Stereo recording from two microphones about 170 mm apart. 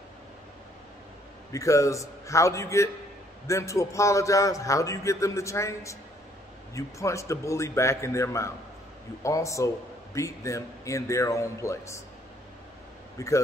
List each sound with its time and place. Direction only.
1.5 s a man's voice: 20° left (ahead or behind)
13.2 s a man's voice: 15° left (ahead or behind)